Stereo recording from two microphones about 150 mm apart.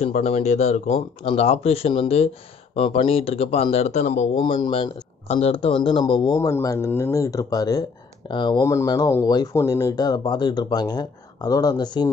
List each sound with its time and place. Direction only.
0.0 s speech: 45° left (ahead or behind); by 12.1 s 30° left (ahead or behind)